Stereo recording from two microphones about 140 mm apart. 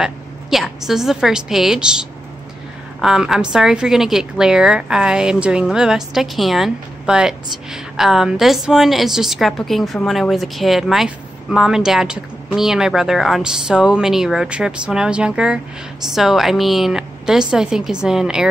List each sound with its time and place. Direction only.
0.0 s a woman's voice: 5° right (ahead or behind)